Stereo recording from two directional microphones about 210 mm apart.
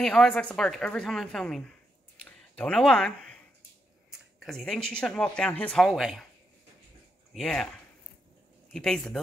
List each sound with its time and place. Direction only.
0.0 s speech: centre (ahead or behind)
2.2 s a sound: 5° left (ahead or behind)
4.4 s speech: centre (ahead or behind)
7.3 s speech: 5° left (ahead or behind)
8.7 s speech: 5° left (ahead or behind)